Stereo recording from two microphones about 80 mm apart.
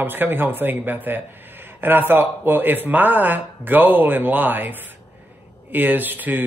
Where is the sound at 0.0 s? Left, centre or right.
Right.